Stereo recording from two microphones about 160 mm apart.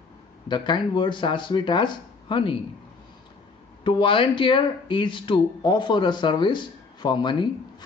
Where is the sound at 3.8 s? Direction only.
35° left (ahead or behind).